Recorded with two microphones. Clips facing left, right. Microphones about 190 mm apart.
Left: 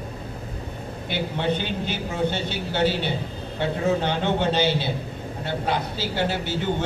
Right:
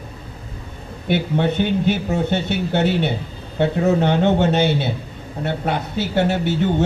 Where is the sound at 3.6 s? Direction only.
50° right (ahead or behind).